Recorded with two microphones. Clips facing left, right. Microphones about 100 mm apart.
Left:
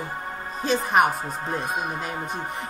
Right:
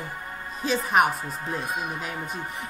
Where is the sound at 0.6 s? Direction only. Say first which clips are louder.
Left 2 dB; centre (ahead or behind).